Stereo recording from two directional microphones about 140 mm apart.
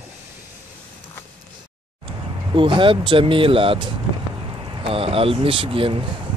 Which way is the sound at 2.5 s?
35° right (ahead or behind).